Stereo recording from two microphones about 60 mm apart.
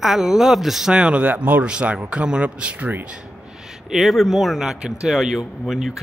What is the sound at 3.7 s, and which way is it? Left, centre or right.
Speech, centre.